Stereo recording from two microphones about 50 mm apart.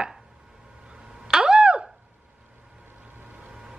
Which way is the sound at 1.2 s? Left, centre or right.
Centre.